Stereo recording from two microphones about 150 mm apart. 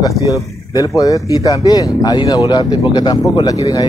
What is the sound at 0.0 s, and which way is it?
Speech, 20° left (ahead or behind).